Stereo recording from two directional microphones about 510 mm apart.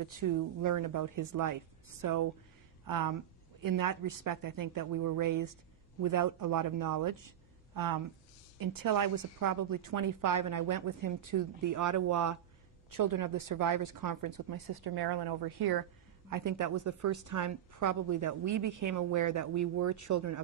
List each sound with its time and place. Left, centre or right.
0.0 s a woman's voice: right